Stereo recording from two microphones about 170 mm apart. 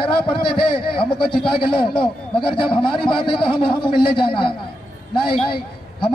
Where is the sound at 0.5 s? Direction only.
30° left (ahead or behind).